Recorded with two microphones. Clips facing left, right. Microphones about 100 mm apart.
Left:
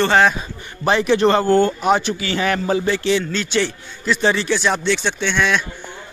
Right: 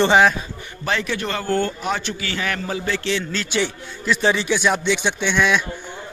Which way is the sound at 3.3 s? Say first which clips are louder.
Left 3 dB; 5° right (ahead or behind).